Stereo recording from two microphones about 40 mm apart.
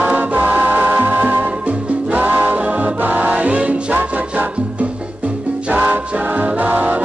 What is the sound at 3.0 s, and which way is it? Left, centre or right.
Music, right.